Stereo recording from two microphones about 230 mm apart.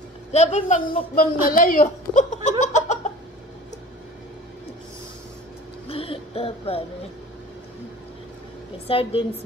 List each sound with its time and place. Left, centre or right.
0.3 s speech: left
2.6 s a sound: left
5.9 s music: left
8.8 s a woman's voice: left